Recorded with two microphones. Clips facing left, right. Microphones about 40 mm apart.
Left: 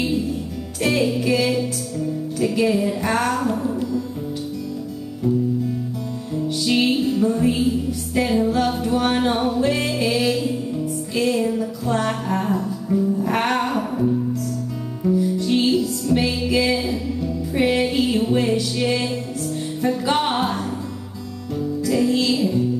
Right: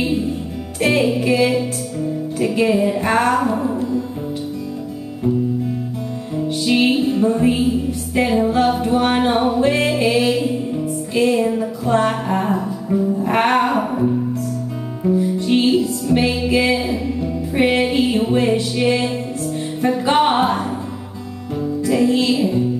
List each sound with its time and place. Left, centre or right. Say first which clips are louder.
0.0 s music: right 2 dB; right
6.3 s music: right 3 dB; right